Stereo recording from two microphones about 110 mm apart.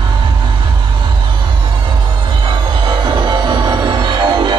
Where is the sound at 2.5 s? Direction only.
45° right (ahead or behind).